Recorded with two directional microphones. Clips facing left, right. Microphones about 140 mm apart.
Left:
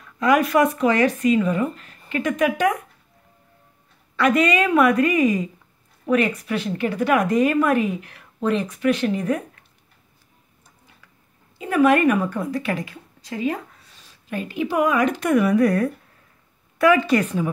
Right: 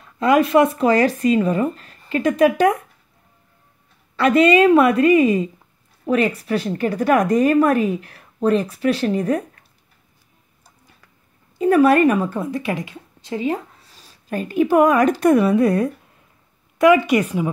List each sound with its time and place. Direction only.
0.0 s a woman's voice: 30° right (ahead or behind)
4.2 s a woman's voice: 30° right (ahead or behind)
11.5 s a woman's voice: 40° right (ahead or behind)
14.3 s a woman's voice: 45° right (ahead or behind); by 17.5 s 10° right (ahead or behind)